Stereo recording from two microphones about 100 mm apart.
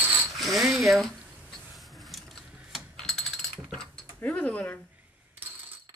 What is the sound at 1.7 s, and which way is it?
Vehicle, centre (ahead or behind).